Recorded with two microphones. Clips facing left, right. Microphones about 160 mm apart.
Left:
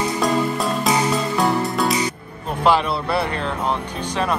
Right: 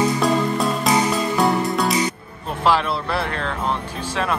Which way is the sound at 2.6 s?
Centre (ahead or behind).